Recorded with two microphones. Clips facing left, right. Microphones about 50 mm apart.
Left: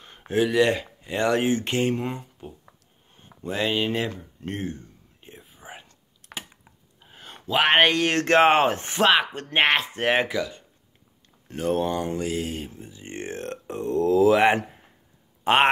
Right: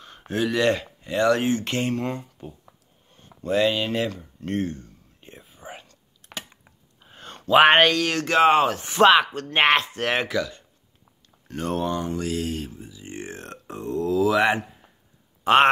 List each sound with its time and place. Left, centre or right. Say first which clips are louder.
0.0 s a sound: left 2 dB; centre
1.1 s speech: right 2 dB; left
4.6 s a sound: right 7 dB; centre
5.3 s whispering: right 2 dB; centre
6.3 s a sound: right 1 dB; centre
7.8 s speech: even; left
9.2 s speech: right 1 dB; centre
9.6 s speech: right 2 dB; centre
9.9 s speech: left 1 dB; centre
11.8 s speech: even; left
12.3 s speech: right 1 dB; centre
12.8 s a sound: left 1 dB; left
15.4 s speech: right 3 dB; centre